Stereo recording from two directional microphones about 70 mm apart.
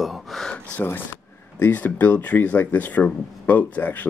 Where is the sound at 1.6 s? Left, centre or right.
Left.